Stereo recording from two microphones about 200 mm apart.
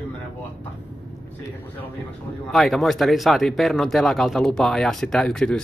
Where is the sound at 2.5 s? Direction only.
Centre (ahead or behind).